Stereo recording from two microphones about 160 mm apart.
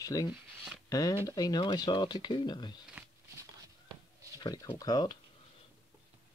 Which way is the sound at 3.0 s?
10° right (ahead or behind).